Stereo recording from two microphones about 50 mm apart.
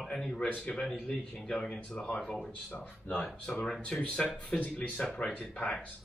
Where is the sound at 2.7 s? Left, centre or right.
Left.